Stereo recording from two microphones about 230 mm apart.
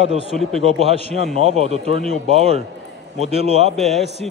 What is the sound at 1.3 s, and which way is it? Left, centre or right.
Speech, right.